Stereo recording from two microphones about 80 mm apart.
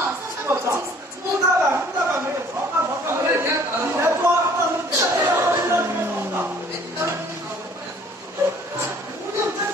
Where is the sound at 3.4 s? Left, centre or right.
Right.